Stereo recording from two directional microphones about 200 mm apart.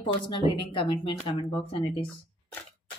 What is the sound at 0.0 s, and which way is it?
Speech, 25° left (ahead or behind).